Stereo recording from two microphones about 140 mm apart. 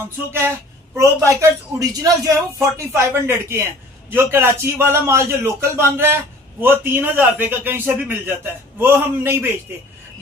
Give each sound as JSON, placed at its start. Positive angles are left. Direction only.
{"t": 0.9, "sound": "a man's voice", "side_deg": -20}